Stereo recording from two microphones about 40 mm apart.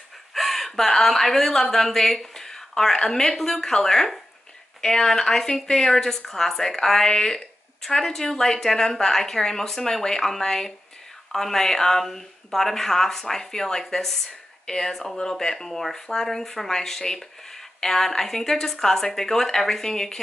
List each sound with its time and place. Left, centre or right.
0.3 s speech: centre